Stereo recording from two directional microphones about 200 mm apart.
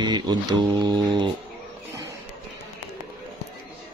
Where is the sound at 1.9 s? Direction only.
15° right (ahead or behind).